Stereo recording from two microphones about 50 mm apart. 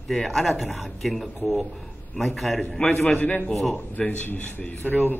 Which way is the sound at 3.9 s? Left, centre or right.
Left.